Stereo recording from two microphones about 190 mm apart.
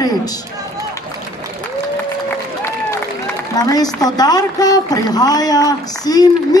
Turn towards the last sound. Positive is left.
turn(degrees=20)  # may be behind; listen again after turning